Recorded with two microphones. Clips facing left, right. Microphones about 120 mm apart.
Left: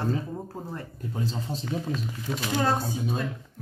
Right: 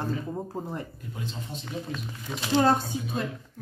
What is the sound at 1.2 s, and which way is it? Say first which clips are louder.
Speech: left 6 dB; 35° left (ahead or behind).